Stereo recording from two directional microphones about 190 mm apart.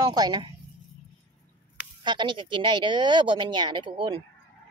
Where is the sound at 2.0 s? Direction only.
25° right (ahead or behind).